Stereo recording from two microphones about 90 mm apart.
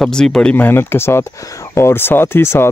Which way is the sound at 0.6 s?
25° left (ahead or behind).